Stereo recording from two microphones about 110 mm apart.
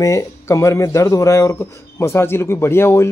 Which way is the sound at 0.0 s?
30° left (ahead or behind).